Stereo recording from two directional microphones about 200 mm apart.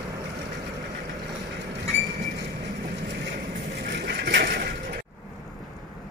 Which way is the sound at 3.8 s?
50° right (ahead or behind).